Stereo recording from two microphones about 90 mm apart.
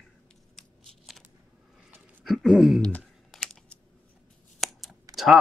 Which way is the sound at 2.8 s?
15° left (ahead or behind).